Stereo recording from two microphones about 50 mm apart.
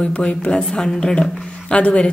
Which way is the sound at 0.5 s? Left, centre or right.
Centre.